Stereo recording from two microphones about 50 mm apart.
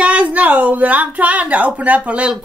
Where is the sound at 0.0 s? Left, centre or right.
Right.